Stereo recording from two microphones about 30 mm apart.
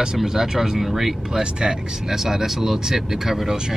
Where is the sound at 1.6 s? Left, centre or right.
Right.